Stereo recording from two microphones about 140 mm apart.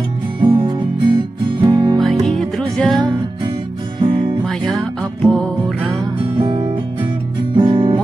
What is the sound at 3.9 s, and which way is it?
Music, 35° right (ahead or behind).